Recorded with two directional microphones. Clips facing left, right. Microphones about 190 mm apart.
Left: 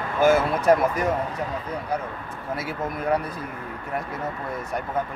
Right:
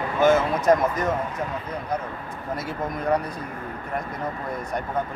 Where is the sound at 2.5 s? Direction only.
5° left (ahead or behind).